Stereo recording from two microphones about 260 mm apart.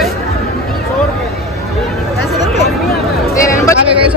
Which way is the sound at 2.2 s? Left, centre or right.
Centre.